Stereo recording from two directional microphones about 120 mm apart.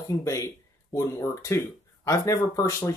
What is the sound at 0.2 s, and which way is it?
Speech, 25° left (ahead or behind).